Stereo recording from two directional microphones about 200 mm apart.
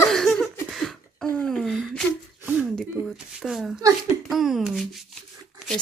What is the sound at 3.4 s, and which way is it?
A woman's voice, centre (ahead or behind).